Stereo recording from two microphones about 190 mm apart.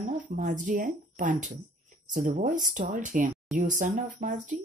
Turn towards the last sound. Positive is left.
turn(degrees=-40)  # may be behind; listen again after turning